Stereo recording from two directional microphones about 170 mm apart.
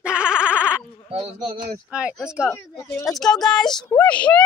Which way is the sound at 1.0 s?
35° right (ahead or behind).